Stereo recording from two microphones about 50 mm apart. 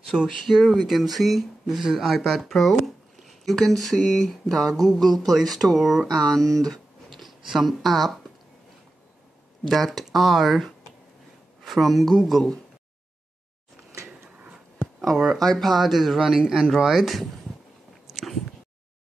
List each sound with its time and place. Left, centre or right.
0.4 s speech: centre
6.0 s a sound: centre
7.5 s speech: centre
9.7 s speech: centre
15.3 s speech: centre
18.1 s a sound: centre